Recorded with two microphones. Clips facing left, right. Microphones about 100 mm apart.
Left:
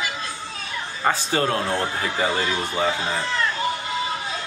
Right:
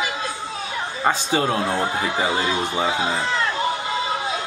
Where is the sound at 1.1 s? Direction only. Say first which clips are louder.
Right 1 dB; 15° right (ahead or behind).